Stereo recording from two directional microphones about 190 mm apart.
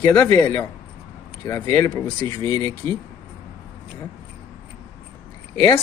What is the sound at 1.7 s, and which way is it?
Speech, 15° left (ahead or behind).